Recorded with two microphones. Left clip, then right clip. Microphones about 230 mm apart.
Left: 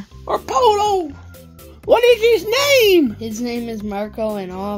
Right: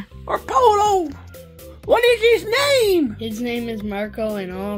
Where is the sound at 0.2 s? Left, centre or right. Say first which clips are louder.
Left 2 dB; left.